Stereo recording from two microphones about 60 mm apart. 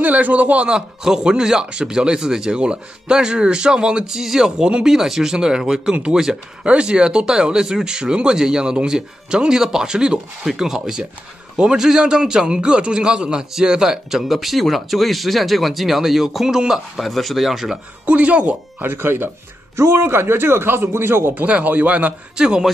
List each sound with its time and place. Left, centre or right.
0.0 s speech: right
0.7 s a man's voice: centre
18.0 s a man's voice: right
18.8 s speech: right
21.5 s a man's voice: right